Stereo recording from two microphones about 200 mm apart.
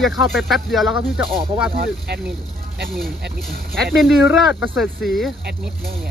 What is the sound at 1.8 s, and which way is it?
Speech, 55° right (ahead or behind).